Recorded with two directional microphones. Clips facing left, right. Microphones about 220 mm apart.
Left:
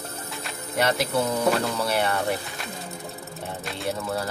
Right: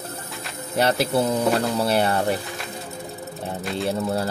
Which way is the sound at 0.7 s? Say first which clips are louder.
Right 3 dB; 30° right (ahead or behind).